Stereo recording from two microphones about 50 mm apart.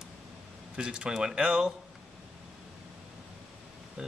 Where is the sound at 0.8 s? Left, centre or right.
Centre.